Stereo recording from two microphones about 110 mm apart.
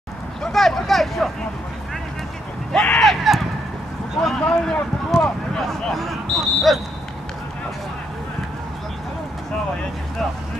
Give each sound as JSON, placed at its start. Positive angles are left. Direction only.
{"t": 0.4, "sound": "speech", "side_deg": 5}
{"t": 2.7, "sound": "a sound", "side_deg": 10}
{"t": 4.2, "sound": "speech", "side_deg": 0}